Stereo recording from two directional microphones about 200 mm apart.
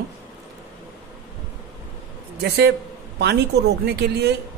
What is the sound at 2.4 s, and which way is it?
A man's voice, 55° right (ahead or behind).